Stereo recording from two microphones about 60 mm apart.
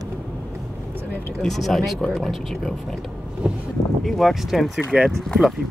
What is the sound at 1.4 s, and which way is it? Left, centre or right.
Speech, centre.